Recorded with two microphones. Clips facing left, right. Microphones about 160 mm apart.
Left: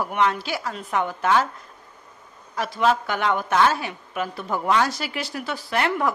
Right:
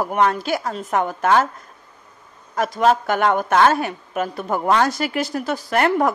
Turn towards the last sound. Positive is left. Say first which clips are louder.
# right 5 dB
turn(degrees=-50)  # may be behind; listen again after turning